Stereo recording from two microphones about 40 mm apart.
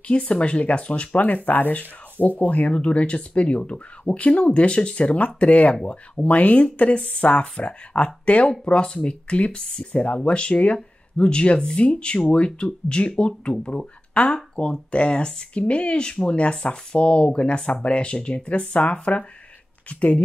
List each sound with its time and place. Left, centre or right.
0.1 s speech: left
1.2 s speech: left